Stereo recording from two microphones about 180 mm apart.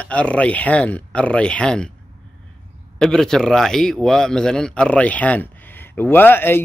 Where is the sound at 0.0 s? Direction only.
5° left (ahead or behind).